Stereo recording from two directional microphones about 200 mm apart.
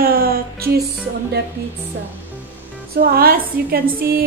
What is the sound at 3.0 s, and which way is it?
A woman's voice, 50° right (ahead or behind).